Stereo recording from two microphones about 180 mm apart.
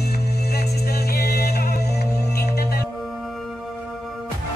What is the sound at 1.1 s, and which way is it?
Music, 60° left (ahead or behind).